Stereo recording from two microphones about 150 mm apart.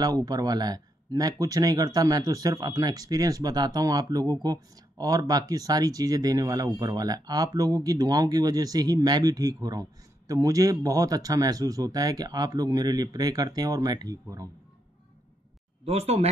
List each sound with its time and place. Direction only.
0.0 s speech: 25° right (ahead or behind)
15.8 s speech: 45° right (ahead or behind)